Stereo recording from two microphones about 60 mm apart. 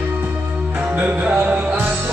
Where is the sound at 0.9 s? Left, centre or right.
Right.